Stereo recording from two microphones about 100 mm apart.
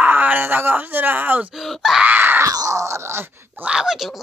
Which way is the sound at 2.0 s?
20° right (ahead or behind).